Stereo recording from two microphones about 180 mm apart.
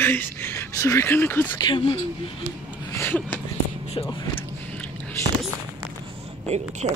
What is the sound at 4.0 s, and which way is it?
Speech, 25° left (ahead or behind).